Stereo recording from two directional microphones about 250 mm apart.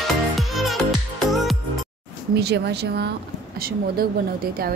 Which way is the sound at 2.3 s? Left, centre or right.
Right.